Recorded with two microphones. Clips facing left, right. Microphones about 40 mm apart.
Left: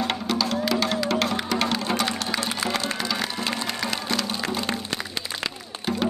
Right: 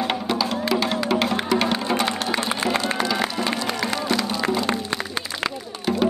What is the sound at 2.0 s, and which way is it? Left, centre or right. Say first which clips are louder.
Music: right 3 dB; right.